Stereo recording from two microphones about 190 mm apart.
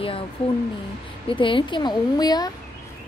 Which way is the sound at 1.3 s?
25° left (ahead or behind).